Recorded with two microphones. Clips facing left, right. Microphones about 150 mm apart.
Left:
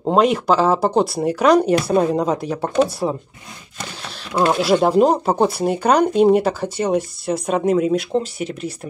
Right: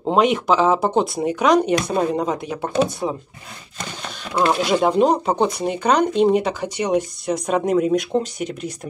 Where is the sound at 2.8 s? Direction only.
5° left (ahead or behind).